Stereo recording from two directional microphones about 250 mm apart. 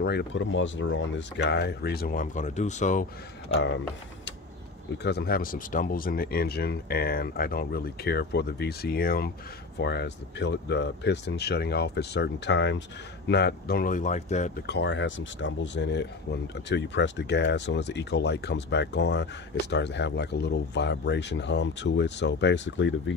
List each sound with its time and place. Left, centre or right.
0.0 s speech: left
4.9 s speech: left
14.7 s speech: left